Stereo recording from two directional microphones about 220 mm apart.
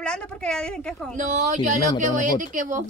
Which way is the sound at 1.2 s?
35° right (ahead or behind).